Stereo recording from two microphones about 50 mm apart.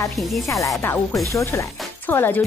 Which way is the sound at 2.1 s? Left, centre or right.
Left.